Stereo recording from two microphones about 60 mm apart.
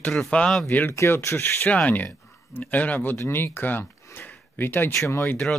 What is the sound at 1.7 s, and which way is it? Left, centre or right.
Speech, left.